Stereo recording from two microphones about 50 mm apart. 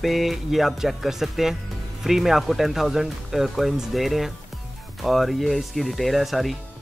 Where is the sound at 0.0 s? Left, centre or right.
Centre.